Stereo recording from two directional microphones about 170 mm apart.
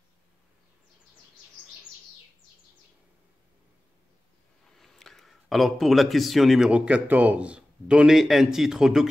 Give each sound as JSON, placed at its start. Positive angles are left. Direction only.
{"t": 4.7, "sound": "speech", "side_deg": 0}